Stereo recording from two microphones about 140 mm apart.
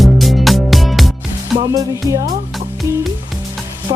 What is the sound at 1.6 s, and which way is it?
Music, 25° right (ahead or behind).